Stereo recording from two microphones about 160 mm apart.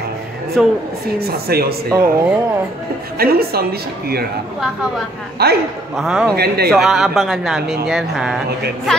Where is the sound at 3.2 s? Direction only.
70° right (ahead or behind).